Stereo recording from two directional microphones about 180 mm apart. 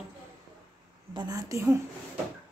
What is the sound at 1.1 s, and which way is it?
Speech, 20° right (ahead or behind).